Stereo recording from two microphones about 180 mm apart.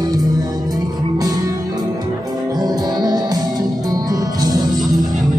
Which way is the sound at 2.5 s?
20° right (ahead or behind).